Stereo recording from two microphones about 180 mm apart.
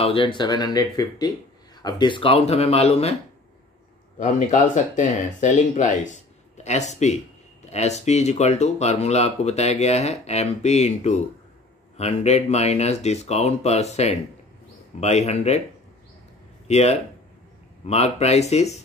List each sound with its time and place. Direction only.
0.0 s speech: 30° left (ahead or behind)
4.2 s speech: 45° left (ahead or behind)
16.6 s speech: 35° left (ahead or behind)